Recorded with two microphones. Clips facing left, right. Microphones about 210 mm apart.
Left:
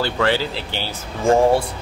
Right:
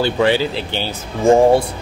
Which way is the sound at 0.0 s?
15° right (ahead or behind).